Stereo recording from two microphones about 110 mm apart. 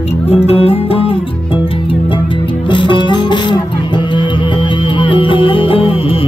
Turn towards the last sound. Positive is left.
turn(degrees=55)  # may be behind; listen again after turning